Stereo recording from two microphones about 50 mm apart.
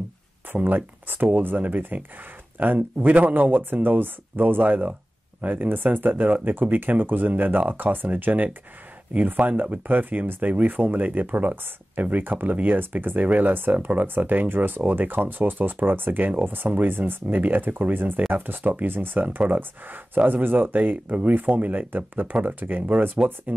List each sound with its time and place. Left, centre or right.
0.6 s speech: right